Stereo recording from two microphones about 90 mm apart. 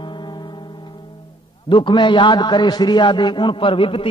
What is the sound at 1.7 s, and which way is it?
A man's voice, 65° left (ahead or behind).